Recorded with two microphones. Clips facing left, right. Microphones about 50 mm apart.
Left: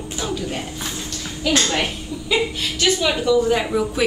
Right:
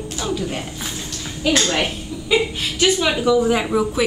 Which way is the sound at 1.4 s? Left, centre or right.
Centre.